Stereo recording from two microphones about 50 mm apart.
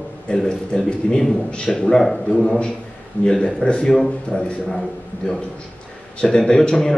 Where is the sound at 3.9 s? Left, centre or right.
Centre.